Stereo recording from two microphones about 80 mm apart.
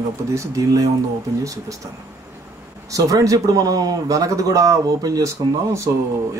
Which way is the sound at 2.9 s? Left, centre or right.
Right.